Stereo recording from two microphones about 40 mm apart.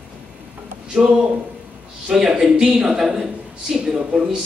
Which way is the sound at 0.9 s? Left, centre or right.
Right.